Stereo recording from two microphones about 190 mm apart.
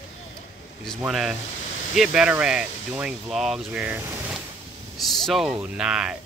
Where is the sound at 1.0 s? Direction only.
5° right (ahead or behind).